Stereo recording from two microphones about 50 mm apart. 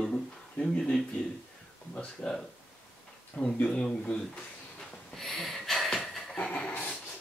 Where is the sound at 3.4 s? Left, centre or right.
Left.